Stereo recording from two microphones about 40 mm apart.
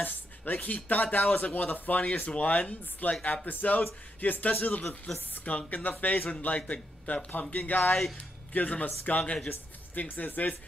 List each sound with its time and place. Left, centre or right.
0.0 s speech: left
3.0 s speech: left
7.5 s speech: left
9.9 s speech: left